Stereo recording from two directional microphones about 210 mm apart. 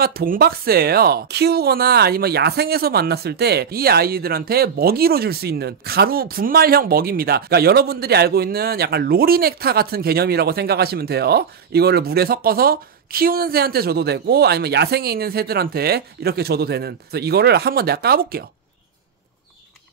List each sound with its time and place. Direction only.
0.0 s speech: 45° right (ahead or behind)